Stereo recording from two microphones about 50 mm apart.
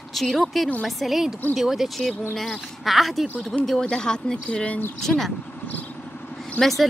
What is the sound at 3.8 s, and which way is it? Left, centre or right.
Speech, centre.